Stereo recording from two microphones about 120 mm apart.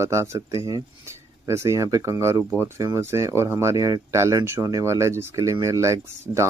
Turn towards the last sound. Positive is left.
turn(degrees=-20)  # may be behind; listen again after turning